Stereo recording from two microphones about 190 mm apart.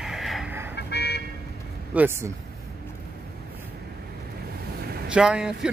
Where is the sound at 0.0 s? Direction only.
Centre (ahead or behind).